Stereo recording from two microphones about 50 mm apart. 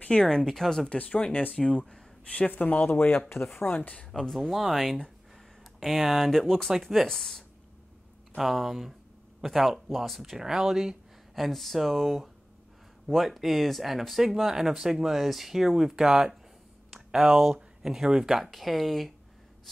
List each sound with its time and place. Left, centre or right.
0.0 s speech: left
0.3 s speech: centre
0.8 s speech: left
1.5 s speech: centre
2.5 s speech: left
4.1 s speech: centre